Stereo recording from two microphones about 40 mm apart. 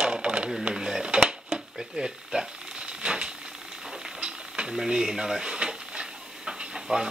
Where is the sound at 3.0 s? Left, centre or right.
Right.